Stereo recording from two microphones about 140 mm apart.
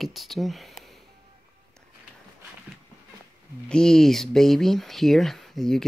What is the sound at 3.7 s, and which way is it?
Speech, 5° left (ahead or behind).